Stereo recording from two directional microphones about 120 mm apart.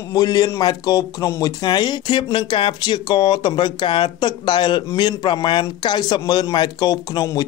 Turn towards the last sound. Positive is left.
turn(degrees=35)  # may be behind; listen again after turning